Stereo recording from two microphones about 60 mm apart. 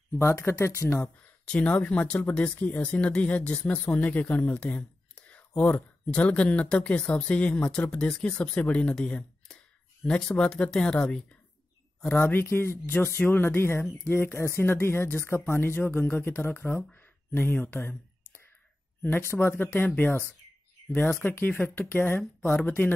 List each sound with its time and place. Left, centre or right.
0.1 s speech: left
0.9 s speech: left
12.1 s speech: left
17.6 s a sound: left
19.0 s speech: left